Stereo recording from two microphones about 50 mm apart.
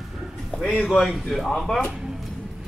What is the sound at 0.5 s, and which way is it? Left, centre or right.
Speech, centre.